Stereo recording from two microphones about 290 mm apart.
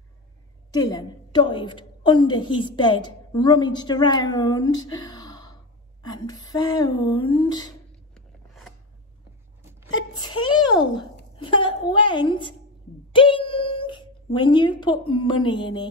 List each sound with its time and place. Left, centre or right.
0.7 s a woman's voice: centre
8.1 s a sound: centre
9.9 s speech: centre